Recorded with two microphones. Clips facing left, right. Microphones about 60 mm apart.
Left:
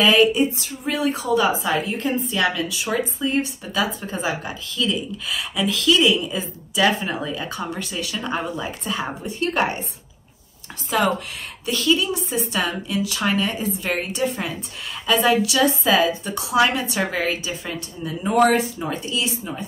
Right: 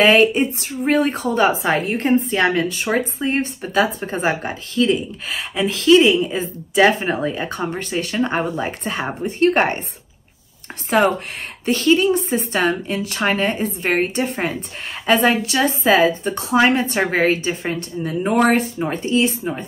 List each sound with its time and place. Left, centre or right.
0.0 s speech: right
10.9 s speech: right